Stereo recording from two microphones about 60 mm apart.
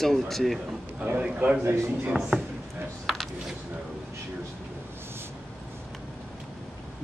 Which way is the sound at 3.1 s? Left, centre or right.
Centre.